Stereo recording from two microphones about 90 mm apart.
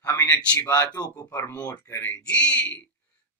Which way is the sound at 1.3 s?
45° left (ahead or behind).